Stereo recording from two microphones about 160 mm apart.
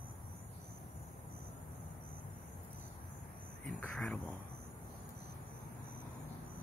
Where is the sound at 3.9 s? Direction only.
Centre (ahead or behind).